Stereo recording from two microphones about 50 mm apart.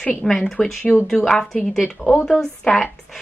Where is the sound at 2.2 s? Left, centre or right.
Centre.